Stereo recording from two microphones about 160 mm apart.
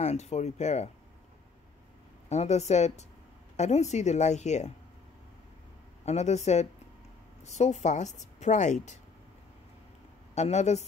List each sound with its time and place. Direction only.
0.0 s speech: 45° left (ahead or behind)
2.2 s speech: 45° left (ahead or behind)
6.0 s speech: 45° left (ahead or behind)
10.3 s speech: 45° left (ahead or behind)